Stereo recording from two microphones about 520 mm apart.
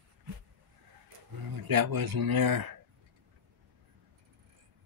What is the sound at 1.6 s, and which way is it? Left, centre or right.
Speech, right.